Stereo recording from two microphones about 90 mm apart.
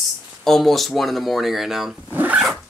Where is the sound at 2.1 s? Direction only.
20° right (ahead or behind).